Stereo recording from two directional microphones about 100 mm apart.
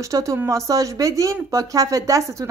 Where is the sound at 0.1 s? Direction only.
35° right (ahead or behind).